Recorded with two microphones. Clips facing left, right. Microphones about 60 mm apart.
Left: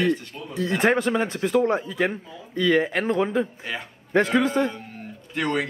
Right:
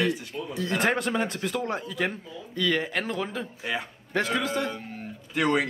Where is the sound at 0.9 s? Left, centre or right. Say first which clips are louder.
Left 4 dB; centre.